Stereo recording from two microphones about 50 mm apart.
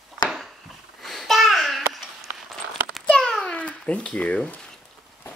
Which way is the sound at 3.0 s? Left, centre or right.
Centre.